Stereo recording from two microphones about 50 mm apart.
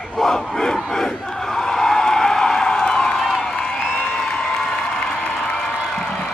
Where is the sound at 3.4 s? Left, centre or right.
Centre.